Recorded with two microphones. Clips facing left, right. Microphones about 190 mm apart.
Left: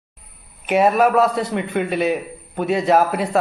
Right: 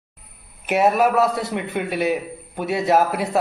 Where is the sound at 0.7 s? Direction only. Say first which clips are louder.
Left 2 dB; 5° right (ahead or behind).